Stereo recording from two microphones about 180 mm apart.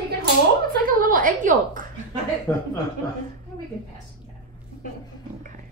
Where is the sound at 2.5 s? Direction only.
10° left (ahead or behind).